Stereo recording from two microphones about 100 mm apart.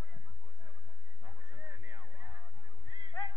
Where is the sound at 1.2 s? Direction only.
20° right (ahead or behind).